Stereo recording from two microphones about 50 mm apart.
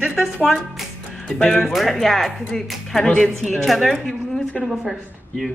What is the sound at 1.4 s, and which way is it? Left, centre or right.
Speech, centre.